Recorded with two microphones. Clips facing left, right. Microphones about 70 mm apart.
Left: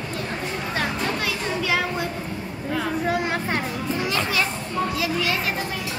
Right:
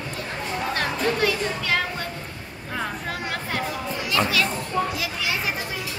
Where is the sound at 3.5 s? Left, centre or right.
Left.